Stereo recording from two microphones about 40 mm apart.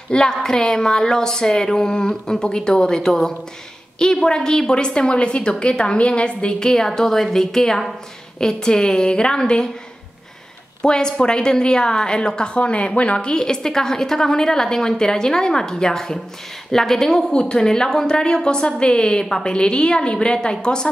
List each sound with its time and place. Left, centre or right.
0.1 s a woman's voice: centre
7.0 s a woman's voice: centre
10.8 s a woman's voice: centre
13.3 s speech: centre
17.3 s a woman's voice: centre